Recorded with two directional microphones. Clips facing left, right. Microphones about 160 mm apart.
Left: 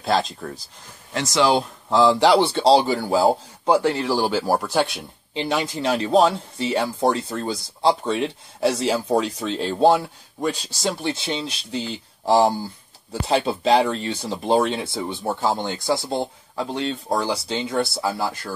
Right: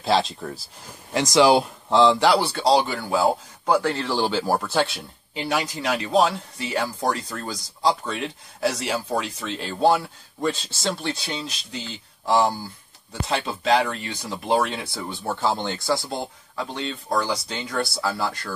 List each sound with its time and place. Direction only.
0.0 s speech: centre (ahead or behind)
1.1 s speech: 15° right (ahead or behind)
1.9 s speech: centre (ahead or behind)
2.1 s speech: 20° left (ahead or behind)
3.8 s speech: 10° left (ahead or behind); by 9.6 s 30° left (ahead or behind)
9.8 s speech: 20° left (ahead or behind)
15.0 s speech: 15° left (ahead or behind)
15.9 s speech: 25° left (ahead or behind)